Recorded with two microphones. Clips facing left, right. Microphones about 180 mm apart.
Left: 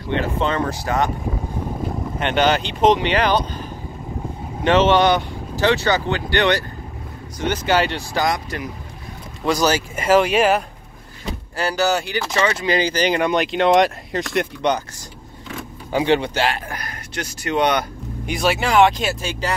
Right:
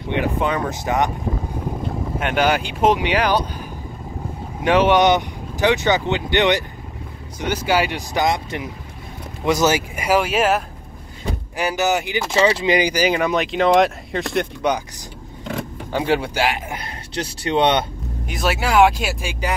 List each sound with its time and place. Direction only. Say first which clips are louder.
0.1 s speech: even; 15° right (ahead or behind)
2.1 s speech: left 1 dB; 5° right (ahead or behind)
4.6 s speech: even; 10° right (ahead or behind)
11.2 s speech: right 1 dB; 15° right (ahead or behind)
12.6 s speech: right 1 dB; 15° right (ahead or behind)
15.9 s speech: left 3 dB; centre (ahead or behind); by 17.8 s 25° right (ahead or behind)
18.2 s speech: left 2 dB; centre (ahead or behind)